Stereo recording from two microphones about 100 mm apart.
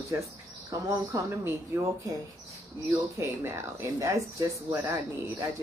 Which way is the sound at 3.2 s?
25° right (ahead or behind).